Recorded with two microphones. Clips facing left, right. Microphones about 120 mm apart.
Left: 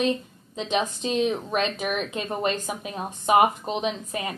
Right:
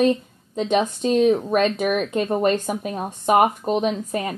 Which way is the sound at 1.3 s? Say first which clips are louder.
Right 9 dB; 10° right (ahead or behind).